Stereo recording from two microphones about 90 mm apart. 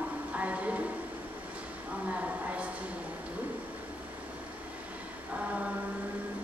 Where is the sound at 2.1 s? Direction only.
15° right (ahead or behind).